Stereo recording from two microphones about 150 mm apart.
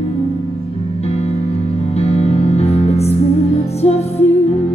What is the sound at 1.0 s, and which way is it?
Music, 45° left (ahead or behind).